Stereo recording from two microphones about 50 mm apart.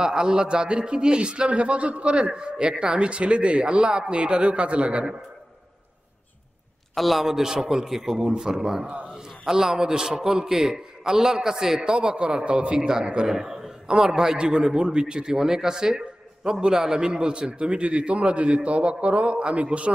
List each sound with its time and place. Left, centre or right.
0.0 s a man's voice: centre
7.0 s a man's voice: centre
8.8 s a man's voice: right
9.1 s a man's voice: centre